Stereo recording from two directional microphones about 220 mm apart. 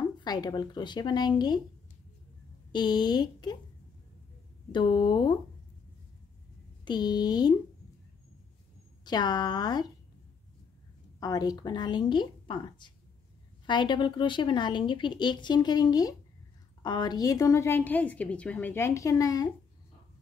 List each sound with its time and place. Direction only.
0.2 s speech: 20° left (ahead or behind)
2.7 s speech: 20° left (ahead or behind)
4.7 s speech: 20° left (ahead or behind)
6.8 s speech: 20° left (ahead or behind)
9.0 s speech: 20° left (ahead or behind)
11.1 s a woman's voice: 15° left (ahead or behind)